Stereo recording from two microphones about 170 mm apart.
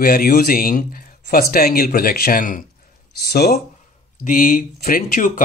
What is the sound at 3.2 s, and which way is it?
Speech, 70° left (ahead or behind).